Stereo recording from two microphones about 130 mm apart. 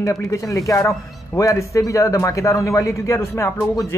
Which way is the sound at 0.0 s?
25° left (ahead or behind).